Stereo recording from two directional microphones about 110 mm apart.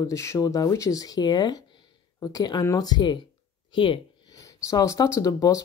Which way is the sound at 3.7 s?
50° left (ahead or behind).